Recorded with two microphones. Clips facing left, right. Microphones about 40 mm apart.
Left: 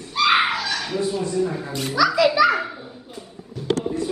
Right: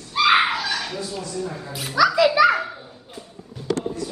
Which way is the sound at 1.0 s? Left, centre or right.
Left.